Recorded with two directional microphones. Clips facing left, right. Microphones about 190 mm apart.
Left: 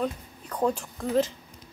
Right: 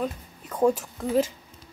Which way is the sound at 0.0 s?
5° right (ahead or behind).